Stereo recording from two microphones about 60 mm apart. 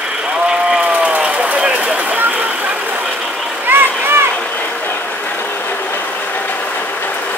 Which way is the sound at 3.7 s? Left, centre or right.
Right.